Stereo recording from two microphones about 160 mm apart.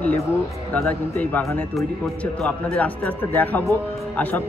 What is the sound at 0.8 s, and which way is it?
Speech, 10° left (ahead or behind).